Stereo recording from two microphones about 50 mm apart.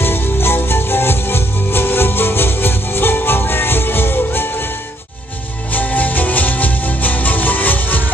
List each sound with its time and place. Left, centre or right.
0.0 s music: left
5.7 s music: left